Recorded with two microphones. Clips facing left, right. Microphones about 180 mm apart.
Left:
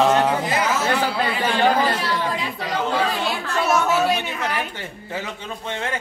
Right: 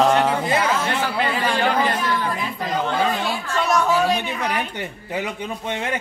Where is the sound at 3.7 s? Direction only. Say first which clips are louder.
Right 1 dB; 5° left (ahead or behind).